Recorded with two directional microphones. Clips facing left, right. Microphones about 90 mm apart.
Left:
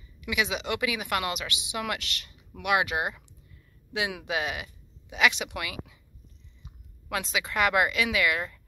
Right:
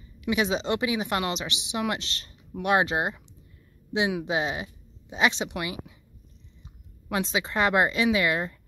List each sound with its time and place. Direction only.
0.2 s speech: 30° right (ahead or behind)
7.1 s speech: 30° right (ahead or behind)